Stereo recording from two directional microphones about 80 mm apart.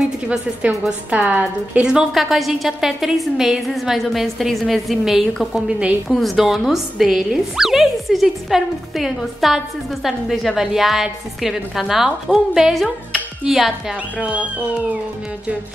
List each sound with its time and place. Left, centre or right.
0.3 s a woman's voice: centre
2.1 s speech: centre
14.1 s a woman's voice: centre